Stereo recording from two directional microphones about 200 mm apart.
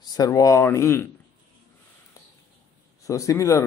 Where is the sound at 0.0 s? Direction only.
20° left (ahead or behind).